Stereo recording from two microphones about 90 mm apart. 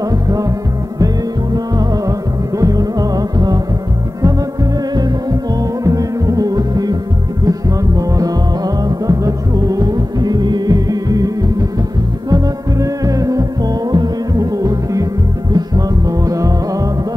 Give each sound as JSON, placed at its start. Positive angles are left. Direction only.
{"t": 0.1, "sound": "music", "side_deg": -40}
{"t": 5.9, "sound": "music", "side_deg": -40}